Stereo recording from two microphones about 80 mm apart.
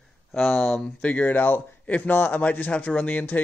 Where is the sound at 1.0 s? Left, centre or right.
Centre.